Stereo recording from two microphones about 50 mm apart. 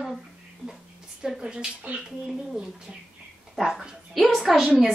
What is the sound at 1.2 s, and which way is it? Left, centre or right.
Speech, centre.